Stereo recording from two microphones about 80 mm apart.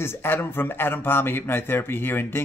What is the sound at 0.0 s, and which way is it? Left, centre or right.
Speech, left.